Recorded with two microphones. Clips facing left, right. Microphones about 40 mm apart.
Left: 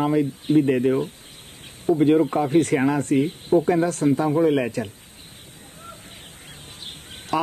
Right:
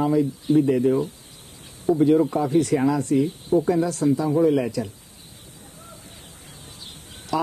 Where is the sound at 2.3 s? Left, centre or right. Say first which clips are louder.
Left 1 dB; left.